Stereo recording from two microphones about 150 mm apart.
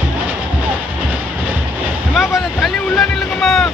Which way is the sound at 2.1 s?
Centre (ahead or behind).